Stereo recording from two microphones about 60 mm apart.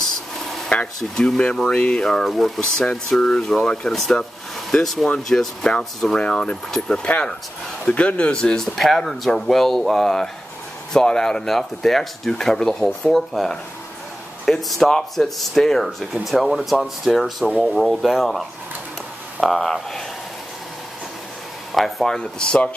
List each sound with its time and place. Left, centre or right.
0.7 s speech: centre
8.4 s speech: centre
21.7 s speech: centre